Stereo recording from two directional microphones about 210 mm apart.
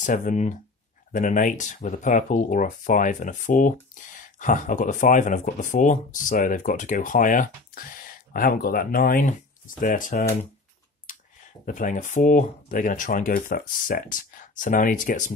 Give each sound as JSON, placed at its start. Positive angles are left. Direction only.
{"t": 0.0, "sound": "speech", "side_deg": 40}
{"t": 11.6, "sound": "speech", "side_deg": 40}